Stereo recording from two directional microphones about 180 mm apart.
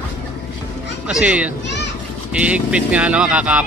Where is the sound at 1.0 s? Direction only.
5° right (ahead or behind).